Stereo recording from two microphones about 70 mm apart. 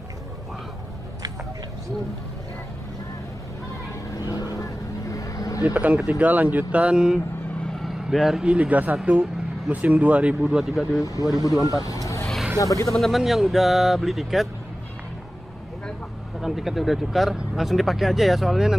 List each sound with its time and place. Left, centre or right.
4.3 s vehicle: left
5.7 s speech: centre
7.8 s vehicle: centre
8.5 s speech: right
11.0 s speech: left
12.9 s speech: centre
16.3 s speech: centre